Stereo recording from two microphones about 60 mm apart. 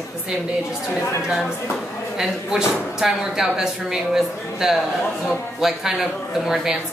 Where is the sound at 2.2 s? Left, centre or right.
Centre.